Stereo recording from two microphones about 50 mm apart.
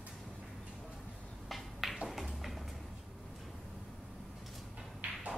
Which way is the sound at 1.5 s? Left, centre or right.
Centre.